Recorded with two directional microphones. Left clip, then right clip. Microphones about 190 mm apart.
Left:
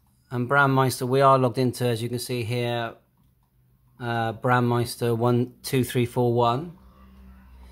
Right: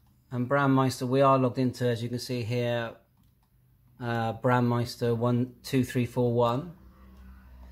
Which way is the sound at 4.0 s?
15° left (ahead or behind).